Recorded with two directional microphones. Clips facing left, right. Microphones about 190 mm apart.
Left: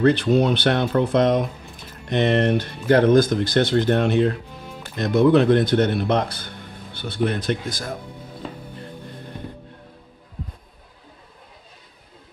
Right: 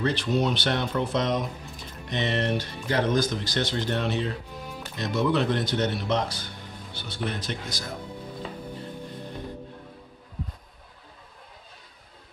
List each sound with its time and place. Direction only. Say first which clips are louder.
0.0 s speech: left 8 dB; 55° left (ahead or behind)